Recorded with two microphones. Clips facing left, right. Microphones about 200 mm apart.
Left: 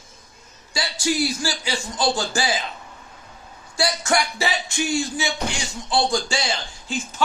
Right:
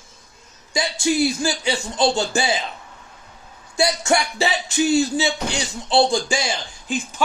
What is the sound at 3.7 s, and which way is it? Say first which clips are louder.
Speech: right 3 dB; 20° right (ahead or behind).